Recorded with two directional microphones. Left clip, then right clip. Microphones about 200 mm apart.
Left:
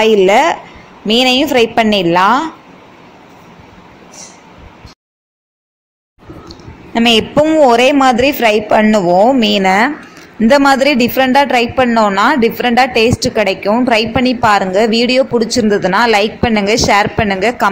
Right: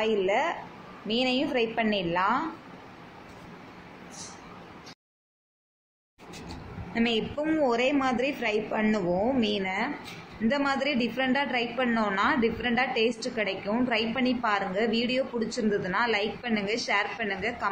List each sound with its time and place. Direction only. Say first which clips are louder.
0.0 s a woman's voice: left 17 dB; 50° left (ahead or behind)
6.9 s a woman's voice: left 17 dB; 55° left (ahead or behind)